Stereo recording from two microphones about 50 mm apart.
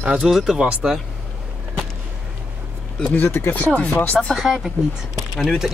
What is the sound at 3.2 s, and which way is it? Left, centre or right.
Speech, left.